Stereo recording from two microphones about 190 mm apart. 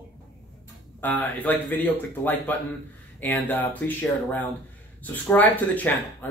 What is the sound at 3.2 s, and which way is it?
Speech, 10° left (ahead or behind).